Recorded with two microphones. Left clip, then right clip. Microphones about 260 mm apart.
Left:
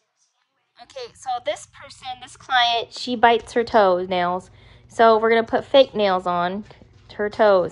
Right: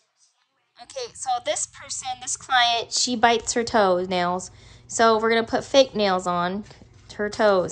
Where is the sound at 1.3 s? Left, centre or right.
Centre.